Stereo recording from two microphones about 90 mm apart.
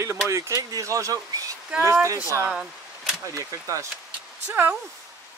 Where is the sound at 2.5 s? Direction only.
5° right (ahead or behind).